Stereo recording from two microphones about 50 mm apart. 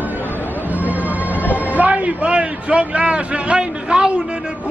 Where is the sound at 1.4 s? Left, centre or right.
Left.